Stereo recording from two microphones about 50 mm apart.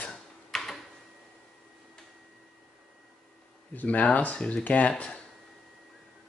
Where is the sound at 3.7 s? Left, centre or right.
Left.